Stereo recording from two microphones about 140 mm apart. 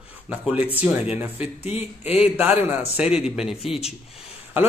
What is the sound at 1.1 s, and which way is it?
Speech, 10° right (ahead or behind).